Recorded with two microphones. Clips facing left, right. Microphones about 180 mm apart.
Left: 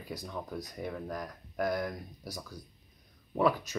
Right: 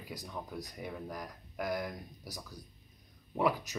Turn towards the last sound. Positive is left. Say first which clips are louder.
# left 3 dB
turn(degrees=-15)  # may be behind; listen again after turning